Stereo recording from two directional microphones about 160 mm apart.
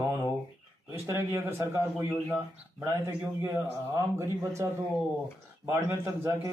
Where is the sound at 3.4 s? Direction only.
20° right (ahead or behind).